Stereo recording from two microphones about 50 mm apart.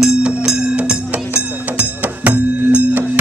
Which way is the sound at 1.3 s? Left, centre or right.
Right.